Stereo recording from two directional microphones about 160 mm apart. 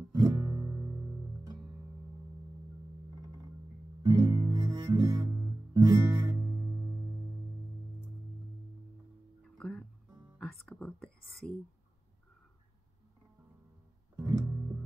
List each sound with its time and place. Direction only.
0.1 s music: 20° right (ahead or behind)
4.0 s guitar: 20° right (ahead or behind)
9.6 s music: 5° left (ahead or behind)
10.4 s whispering: 5° left (ahead or behind)
14.2 s music: 20° right (ahead or behind)